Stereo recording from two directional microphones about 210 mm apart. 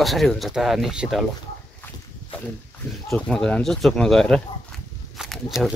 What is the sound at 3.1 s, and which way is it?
Speech, centre (ahead or behind).